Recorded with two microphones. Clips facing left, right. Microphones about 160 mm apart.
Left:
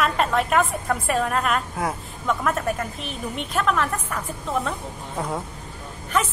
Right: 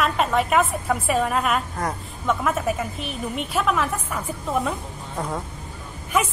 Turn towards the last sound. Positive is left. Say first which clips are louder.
# right 1 dB
turn(degrees=-10)  # may be behind; listen again after turning